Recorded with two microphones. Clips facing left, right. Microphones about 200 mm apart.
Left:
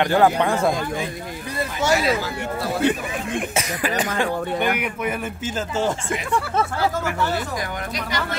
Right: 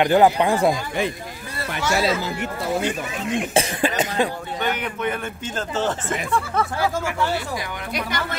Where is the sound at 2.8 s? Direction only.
60° left (ahead or behind).